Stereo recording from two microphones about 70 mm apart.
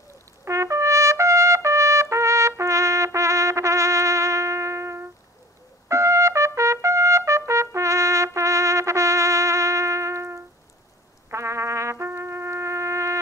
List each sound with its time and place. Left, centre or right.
0.5 s trumpet: right